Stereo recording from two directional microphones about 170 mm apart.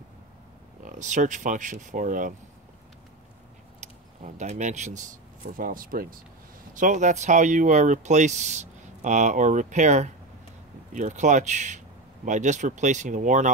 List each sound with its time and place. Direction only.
0.8 s speech: 45° right (ahead or behind)
3.8 s speech: 45° right (ahead or behind)